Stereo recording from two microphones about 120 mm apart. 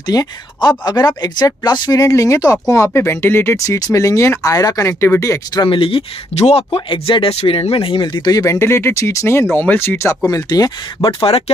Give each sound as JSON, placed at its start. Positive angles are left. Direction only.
{"t": 0.0, "sound": "speech", "side_deg": 30}
{"t": 5.6, "sound": "speech", "side_deg": 45}
{"t": 11.1, "sound": "speech", "side_deg": 45}